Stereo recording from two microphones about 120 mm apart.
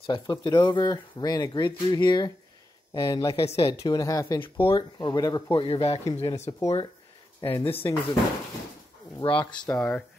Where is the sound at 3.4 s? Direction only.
50° left (ahead or behind).